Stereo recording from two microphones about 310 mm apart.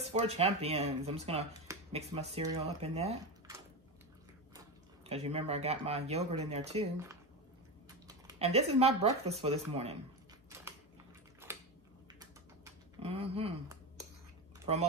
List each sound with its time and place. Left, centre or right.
0.0 s speech: centre
4.6 s speech: centre
8.3 s speech: centre
11.4 s a sound: centre
13.0 s speech: centre